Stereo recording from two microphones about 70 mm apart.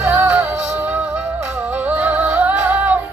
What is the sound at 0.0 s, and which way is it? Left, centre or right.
Music, right.